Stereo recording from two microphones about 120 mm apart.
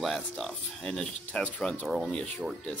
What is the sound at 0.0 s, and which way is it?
Speech, 5° left (ahead or behind).